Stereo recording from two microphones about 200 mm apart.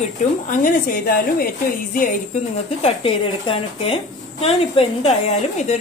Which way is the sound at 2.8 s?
25° left (ahead or behind).